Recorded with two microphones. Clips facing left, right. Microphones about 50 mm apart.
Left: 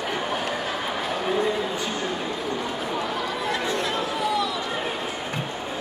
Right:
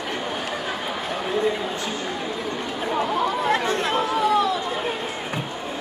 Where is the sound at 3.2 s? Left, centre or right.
Right.